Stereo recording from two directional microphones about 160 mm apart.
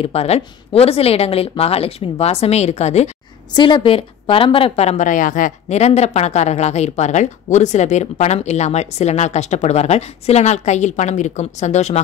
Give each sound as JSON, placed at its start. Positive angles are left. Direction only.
{"t": 0.0, "sound": "speech", "side_deg": 40}
{"t": 3.5, "sound": "a woman's voice", "side_deg": 30}